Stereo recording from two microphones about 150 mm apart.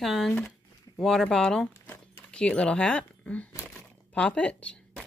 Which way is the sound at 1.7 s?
15° left (ahead or behind).